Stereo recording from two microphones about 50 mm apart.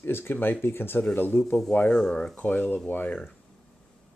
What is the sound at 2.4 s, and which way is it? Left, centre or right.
Speech, left.